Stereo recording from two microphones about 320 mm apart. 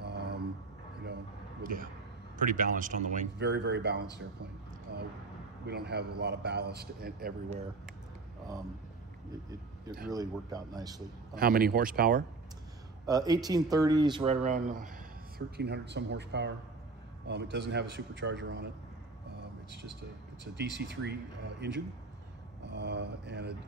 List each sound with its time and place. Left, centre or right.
0.0 s a sound: right
2.3 s speech: right
4.9 s a sound: right
5.7 s a man's voice: right
11.3 s speech: right
13.0 s a man's voice: centre; by 18.7 s right
19.7 s a man's voice: right